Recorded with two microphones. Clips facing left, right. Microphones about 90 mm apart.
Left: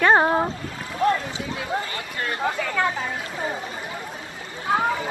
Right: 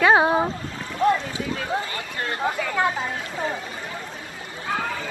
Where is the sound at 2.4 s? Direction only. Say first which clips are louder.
Right 1 dB; 20° right (ahead or behind).